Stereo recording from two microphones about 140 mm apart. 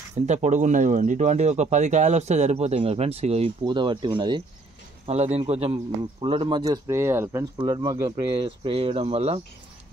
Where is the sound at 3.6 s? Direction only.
35° right (ahead or behind).